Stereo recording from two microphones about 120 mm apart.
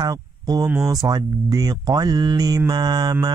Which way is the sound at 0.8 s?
30° right (ahead or behind).